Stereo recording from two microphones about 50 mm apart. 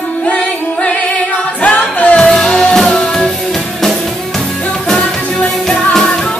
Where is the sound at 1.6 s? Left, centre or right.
Left.